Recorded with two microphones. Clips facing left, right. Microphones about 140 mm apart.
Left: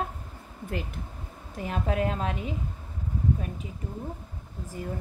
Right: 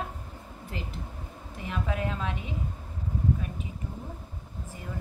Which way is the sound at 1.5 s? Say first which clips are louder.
Left 4 dB; 40° left (ahead or behind).